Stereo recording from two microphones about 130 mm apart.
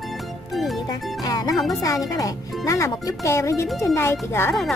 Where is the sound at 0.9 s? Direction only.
30° left (ahead or behind).